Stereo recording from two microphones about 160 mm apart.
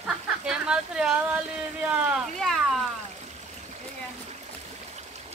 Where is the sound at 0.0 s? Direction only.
5° right (ahead or behind).